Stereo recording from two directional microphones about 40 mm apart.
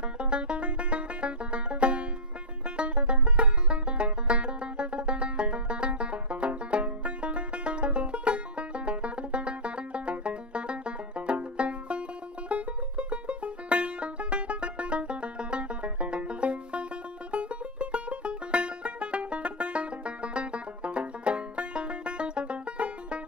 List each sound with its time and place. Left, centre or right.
0.2 s banjo: right
12.4 s music: right